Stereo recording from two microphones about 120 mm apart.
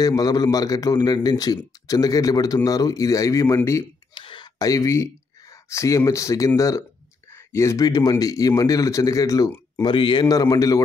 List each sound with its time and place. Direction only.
0.0 s a man's voice: 30° left (ahead or behind)
4.1 s a man's voice: 45° left (ahead or behind)
9.8 s a man's voice: 40° left (ahead or behind)